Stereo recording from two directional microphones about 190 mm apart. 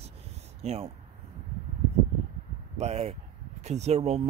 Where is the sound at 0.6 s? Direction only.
35° right (ahead or behind).